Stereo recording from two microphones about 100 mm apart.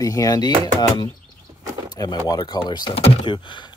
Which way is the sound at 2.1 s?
40° left (ahead or behind).